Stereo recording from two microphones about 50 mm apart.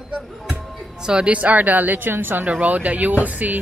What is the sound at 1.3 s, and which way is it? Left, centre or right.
Speech, right.